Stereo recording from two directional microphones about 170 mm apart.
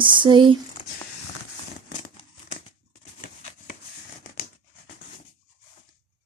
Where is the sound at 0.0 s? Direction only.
30° right (ahead or behind).